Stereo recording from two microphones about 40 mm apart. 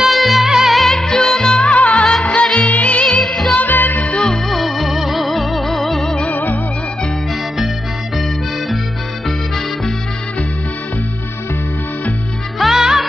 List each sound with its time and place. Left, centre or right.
0.0 s music: centre
0.7 s music: centre
1.6 s music: left
3.2 s music: centre
3.5 s music: left
4.5 s music: centre
6.3 s music: left
12.5 s music: centre